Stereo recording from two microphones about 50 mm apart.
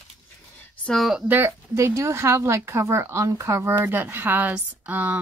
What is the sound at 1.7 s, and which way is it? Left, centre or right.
Speech, right.